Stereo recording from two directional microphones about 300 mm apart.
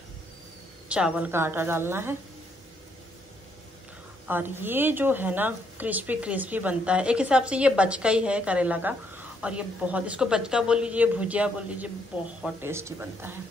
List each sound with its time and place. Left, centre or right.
0.8 s a woman's voice: centre
4.3 s a woman's voice: centre